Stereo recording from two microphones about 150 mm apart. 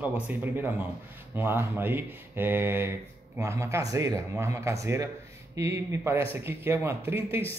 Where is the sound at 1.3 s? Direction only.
15° right (ahead or behind).